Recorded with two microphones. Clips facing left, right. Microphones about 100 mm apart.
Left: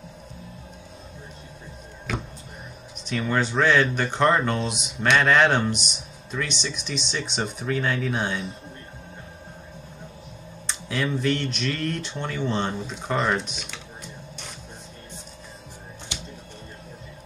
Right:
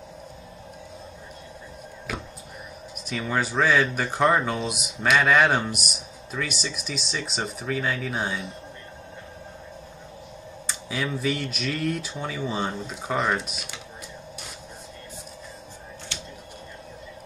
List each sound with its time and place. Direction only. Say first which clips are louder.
2.1 s a sound: left 3 dB; 5° right (ahead or behind)
3.1 s speech: left 2 dB; 5° right (ahead or behind)
10.7 s speech: left 3 dB; 5° right (ahead or behind)
16.1 s music: left 2 dB; 15° left (ahead or behind)